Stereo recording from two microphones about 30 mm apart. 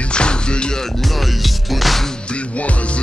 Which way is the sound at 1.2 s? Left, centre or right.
Centre.